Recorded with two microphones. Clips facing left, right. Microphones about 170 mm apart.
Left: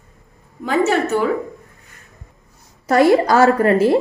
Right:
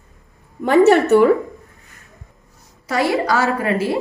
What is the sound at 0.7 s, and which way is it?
Speech, 65° right (ahead or behind).